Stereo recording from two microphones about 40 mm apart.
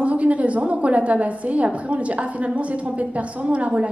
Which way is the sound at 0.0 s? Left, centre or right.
Right.